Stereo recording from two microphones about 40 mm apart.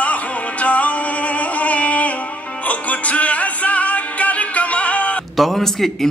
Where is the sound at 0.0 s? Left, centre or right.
Left.